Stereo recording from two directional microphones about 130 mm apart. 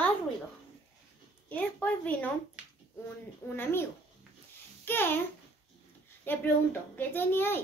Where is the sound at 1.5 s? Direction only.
10° left (ahead or behind).